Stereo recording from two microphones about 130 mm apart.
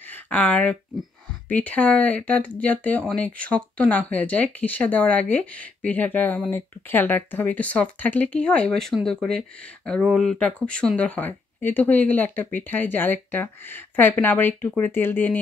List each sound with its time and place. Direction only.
0.0 s speech: 15° left (ahead or behind)